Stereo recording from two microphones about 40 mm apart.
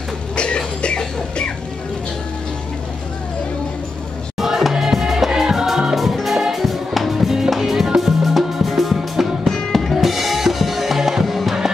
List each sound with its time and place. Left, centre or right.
0.4 s cough: left
4.4 s music: centre
9.7 s drum kit: centre